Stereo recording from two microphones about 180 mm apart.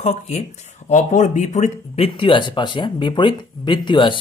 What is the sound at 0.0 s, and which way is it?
A man's voice, 40° left (ahead or behind).